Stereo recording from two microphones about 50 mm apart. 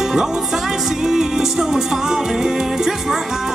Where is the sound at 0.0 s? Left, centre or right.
Centre.